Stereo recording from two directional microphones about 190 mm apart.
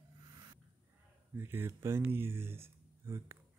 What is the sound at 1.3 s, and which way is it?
Speech, 10° right (ahead or behind).